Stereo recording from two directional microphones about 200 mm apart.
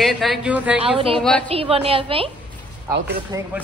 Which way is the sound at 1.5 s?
30° right (ahead or behind).